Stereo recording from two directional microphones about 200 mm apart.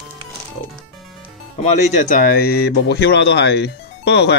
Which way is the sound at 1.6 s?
35° left (ahead or behind).